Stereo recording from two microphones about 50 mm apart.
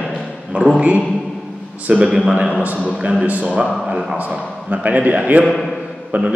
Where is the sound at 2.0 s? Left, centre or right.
Centre.